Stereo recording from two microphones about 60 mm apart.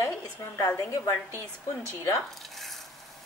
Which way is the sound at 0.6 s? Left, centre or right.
Left.